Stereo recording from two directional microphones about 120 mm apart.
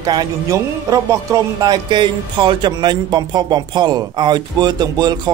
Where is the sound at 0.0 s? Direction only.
35° right (ahead or behind).